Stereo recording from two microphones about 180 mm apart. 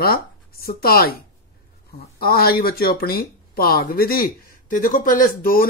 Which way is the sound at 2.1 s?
55° left (ahead or behind).